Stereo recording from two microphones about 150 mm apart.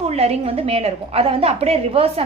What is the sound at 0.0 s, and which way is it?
A woman's voice, 45° right (ahead or behind).